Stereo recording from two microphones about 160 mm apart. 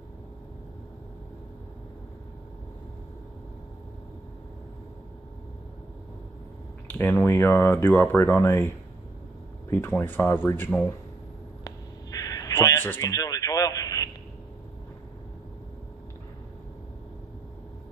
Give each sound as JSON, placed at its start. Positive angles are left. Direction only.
{"t": 6.9, "sound": "speech", "side_deg": 10}
{"t": 9.7, "sound": "speech", "side_deg": 15}
{"t": 11.6, "sound": "a sound", "side_deg": 20}